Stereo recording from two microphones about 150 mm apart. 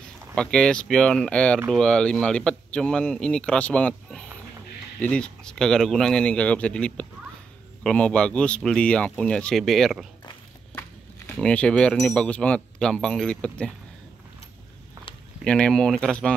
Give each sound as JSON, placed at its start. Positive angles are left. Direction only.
{"t": 0.4, "sound": "speech", "side_deg": 5}
{"t": 10.7, "sound": "a sound", "side_deg": 15}
{"t": 11.3, "sound": "speech", "side_deg": 5}
{"t": 15.4, "sound": "speech", "side_deg": 5}